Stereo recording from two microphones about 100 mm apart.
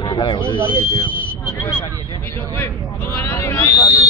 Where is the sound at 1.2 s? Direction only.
20° left (ahead or behind); by 4.0 s 35° left (ahead or behind).